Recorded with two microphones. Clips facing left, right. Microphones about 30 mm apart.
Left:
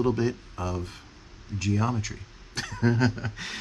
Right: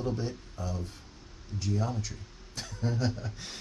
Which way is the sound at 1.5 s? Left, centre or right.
Left.